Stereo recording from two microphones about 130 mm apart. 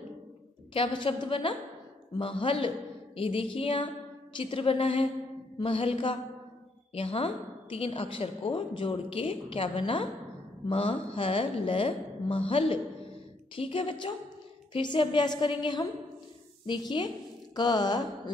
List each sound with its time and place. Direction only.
0.7 s a woman's voice: 40° left (ahead or behind)